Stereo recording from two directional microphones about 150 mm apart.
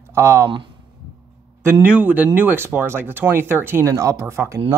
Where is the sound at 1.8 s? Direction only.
10° right (ahead or behind).